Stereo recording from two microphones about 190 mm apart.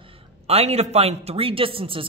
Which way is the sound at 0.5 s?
35° right (ahead or behind).